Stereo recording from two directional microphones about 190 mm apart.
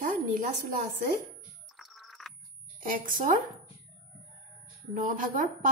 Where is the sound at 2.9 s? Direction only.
45° right (ahead or behind).